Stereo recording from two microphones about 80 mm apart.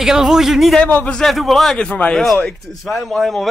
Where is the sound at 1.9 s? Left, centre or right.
Centre.